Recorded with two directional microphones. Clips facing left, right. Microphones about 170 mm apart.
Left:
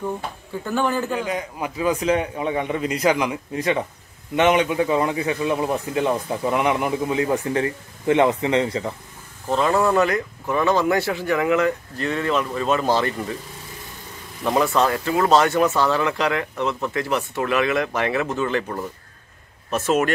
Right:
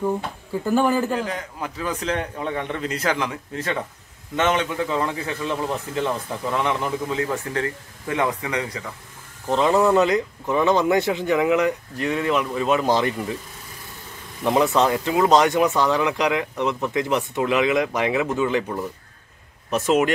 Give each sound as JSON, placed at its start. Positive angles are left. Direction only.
{"t": 0.7, "sound": "speech", "side_deg": -10}
{"t": 1.1, "sound": "a man's voice", "side_deg": 10}
{"t": 9.5, "sound": "speech", "side_deg": -20}
{"t": 14.4, "sound": "speech", "side_deg": -20}